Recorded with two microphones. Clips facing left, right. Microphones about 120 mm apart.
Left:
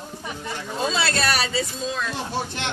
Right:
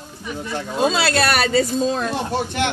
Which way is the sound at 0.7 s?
65° right (ahead or behind).